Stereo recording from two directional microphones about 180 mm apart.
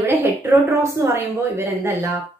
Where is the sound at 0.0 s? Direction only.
10° right (ahead or behind).